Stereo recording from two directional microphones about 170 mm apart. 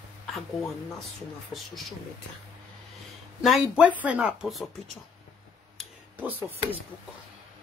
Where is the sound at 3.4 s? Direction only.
Centre (ahead or behind).